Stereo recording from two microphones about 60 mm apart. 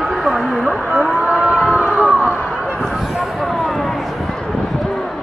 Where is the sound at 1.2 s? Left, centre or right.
Centre.